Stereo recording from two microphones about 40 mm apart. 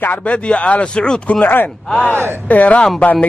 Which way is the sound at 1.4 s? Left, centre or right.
Left.